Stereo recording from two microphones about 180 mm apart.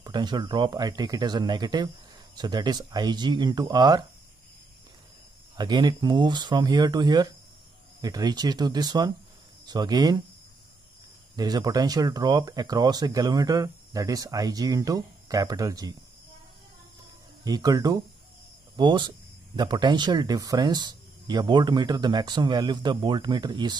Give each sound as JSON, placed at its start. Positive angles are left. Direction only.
{"t": 0.0, "sound": "speech", "side_deg": -25}
{"t": 5.6, "sound": "speech", "side_deg": -25}
{"t": 11.3, "sound": "speech", "side_deg": -20}
{"t": 17.5, "sound": "speech", "side_deg": -20}